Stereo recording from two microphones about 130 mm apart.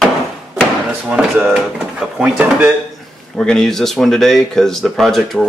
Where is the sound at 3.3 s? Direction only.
5° left (ahead or behind).